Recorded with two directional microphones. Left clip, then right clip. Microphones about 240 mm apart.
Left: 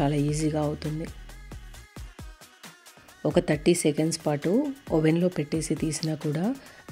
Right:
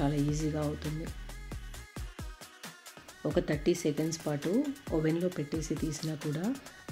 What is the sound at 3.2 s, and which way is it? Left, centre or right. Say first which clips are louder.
Speech: left 7 dB; left.